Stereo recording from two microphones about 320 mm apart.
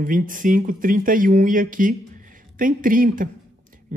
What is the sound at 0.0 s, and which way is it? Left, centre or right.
Speech, right.